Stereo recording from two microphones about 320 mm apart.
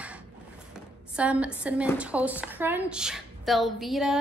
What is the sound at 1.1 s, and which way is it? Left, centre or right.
A woman's voice, centre.